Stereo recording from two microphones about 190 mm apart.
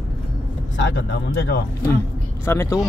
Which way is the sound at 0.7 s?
70° left (ahead or behind).